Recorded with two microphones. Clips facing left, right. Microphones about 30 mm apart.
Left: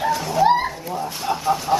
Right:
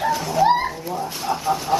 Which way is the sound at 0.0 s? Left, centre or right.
Centre.